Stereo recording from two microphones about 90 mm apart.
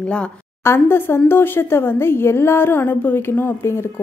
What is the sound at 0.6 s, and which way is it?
Speech, 25° left (ahead or behind).